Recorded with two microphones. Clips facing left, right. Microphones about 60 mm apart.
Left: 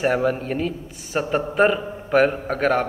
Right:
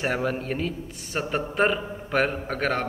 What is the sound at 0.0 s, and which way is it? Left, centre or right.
A man's voice, centre.